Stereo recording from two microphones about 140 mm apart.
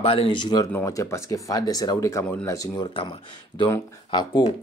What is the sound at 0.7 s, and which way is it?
Speech, 20° left (ahead or behind).